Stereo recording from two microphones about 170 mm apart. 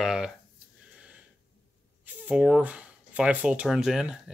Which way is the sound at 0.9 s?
5° right (ahead or behind).